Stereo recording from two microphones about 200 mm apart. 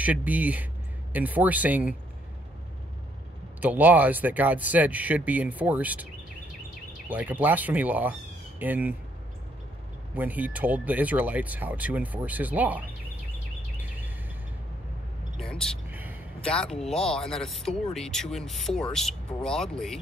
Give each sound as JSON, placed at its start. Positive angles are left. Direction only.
{"t": 0.0, "sound": "speech", "side_deg": -10}
{"t": 3.6, "sound": "speech", "side_deg": -10}
{"t": 7.1, "sound": "speech", "side_deg": -10}
{"t": 10.1, "sound": "speech", "side_deg": -10}
{"t": 13.7, "sound": "a sound", "side_deg": -10}
{"t": 15.3, "sound": "speech", "side_deg": 0}
{"t": 15.9, "sound": "a sound", "side_deg": -10}
{"t": 16.3, "sound": "speech", "side_deg": 5}